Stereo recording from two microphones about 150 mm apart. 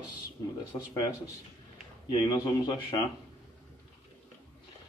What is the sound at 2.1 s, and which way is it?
Speech, 30° left (ahead or behind).